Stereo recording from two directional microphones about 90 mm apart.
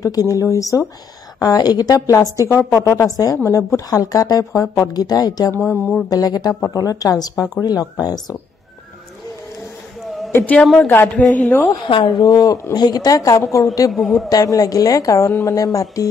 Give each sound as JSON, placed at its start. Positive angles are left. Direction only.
{"t": 0.0, "sound": "a woman's voice", "side_deg": 40}
{"t": 5.5, "sound": "speech", "side_deg": 25}
{"t": 6.0, "sound": "speech", "side_deg": 45}
{"t": 10.3, "sound": "a woman's voice", "side_deg": 15}
{"t": 12.2, "sound": "a woman's voice", "side_deg": 45}
{"t": 13.9, "sound": "a man's voice", "side_deg": 0}
{"t": 14.3, "sound": "a woman's voice", "side_deg": 40}